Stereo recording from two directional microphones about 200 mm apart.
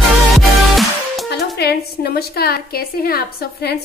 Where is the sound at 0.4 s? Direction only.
Centre (ahead or behind).